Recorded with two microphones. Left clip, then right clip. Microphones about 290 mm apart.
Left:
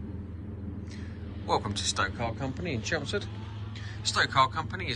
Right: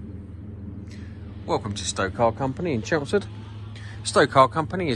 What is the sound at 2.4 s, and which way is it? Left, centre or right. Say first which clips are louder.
A man's voice: right 7 dB; centre.